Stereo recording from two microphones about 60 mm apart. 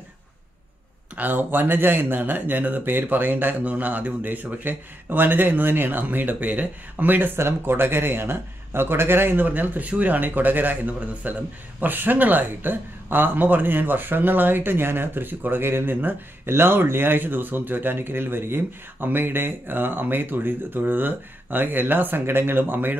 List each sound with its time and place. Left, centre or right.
1.1 s speech: right
7.3 s speech: right